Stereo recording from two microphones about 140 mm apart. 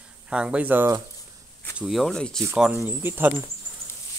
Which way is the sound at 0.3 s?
10° right (ahead or behind).